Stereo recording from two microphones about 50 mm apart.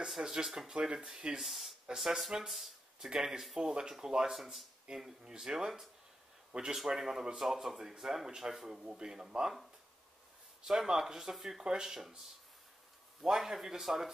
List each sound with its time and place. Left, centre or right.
0.2 s speech: centre
1.4 s speech: centre
4.9 s speech: centre
10.6 s speech: centre
13.2 s speech: centre